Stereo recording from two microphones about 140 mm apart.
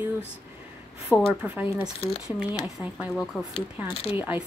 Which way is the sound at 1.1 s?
5° left (ahead or behind).